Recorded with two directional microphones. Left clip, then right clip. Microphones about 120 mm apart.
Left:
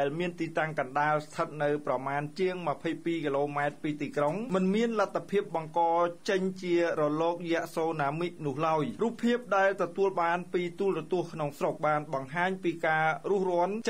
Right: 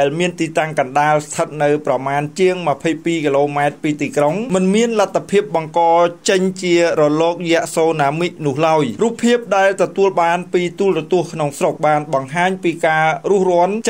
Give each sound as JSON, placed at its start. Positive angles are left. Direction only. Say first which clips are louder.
{"t": 0.0, "sound": "speech", "louder": "right 14 dB", "side_deg": -20}